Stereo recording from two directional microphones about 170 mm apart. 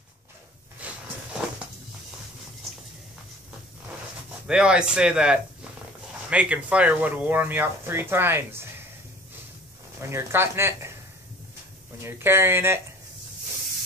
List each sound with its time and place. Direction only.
0.8 s a sound: 10° right (ahead or behind)
4.5 s speech: 5° right (ahead or behind)
10.0 s speech: 15° right (ahead or behind)
12.0 s speech: 15° right (ahead or behind)